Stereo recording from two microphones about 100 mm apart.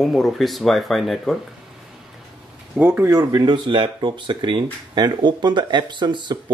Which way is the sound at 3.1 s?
40° right (ahead or behind).